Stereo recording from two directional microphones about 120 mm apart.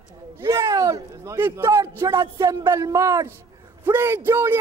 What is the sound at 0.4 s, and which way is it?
Speech, 30° right (ahead or behind).